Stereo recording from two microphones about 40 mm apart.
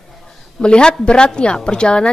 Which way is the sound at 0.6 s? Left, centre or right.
Left.